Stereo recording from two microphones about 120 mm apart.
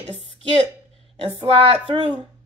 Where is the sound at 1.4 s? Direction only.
55° right (ahead or behind).